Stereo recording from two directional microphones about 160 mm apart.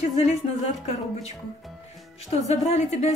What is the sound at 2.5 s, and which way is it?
Speech, 45° left (ahead or behind).